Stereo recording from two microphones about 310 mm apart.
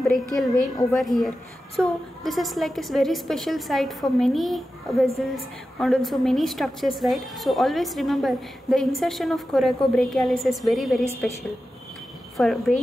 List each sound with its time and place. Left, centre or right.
0.1 s a woman's voice: centre
12.4 s a woman's voice: centre